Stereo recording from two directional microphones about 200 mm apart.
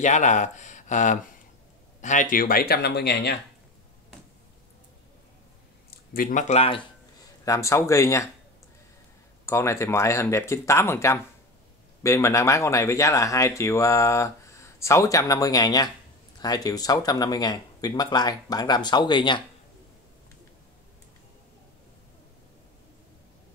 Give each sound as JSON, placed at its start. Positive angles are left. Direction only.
{"t": 0.0, "sound": "speech", "side_deg": 35}
{"t": 5.9, "sound": "speech", "side_deg": 45}
{"t": 7.4, "sound": "speech", "side_deg": 15}
{"t": 9.5, "sound": "speech", "side_deg": 15}